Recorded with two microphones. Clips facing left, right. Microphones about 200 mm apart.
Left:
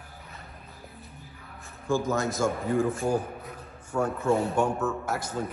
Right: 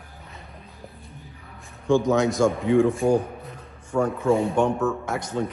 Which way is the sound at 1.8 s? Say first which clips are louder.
Right 7 dB; centre (ahead or behind).